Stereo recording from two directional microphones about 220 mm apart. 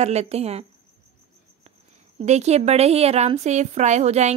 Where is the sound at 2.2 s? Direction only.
30° right (ahead or behind).